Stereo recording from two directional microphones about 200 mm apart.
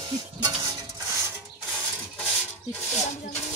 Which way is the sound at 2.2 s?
5° left (ahead or behind).